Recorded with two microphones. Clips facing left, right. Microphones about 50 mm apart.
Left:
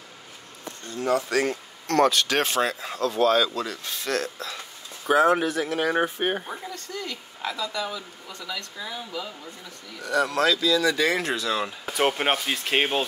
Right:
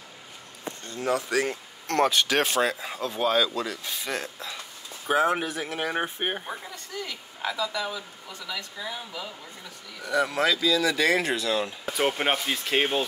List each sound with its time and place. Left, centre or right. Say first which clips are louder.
1.0 s speech: left 2 dB; centre
1.9 s speech: left 2 dB; centre
2.3 s speech: even; centre
12.0 s speech: left 2 dB; centre
12.6 s speech: left 1 dB; left